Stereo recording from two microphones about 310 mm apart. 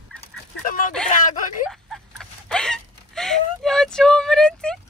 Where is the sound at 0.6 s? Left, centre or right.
Left.